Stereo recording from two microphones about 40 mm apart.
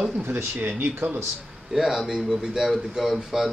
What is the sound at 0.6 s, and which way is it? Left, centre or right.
Speech, right.